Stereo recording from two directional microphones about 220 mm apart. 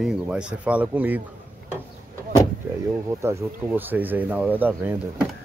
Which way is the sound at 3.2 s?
10° right (ahead or behind).